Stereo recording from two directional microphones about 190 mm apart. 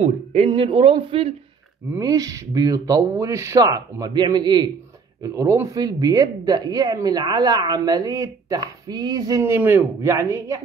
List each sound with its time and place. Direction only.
0.0 s speech: 35° right (ahead or behind)
1.9 s speech: 20° right (ahead or behind)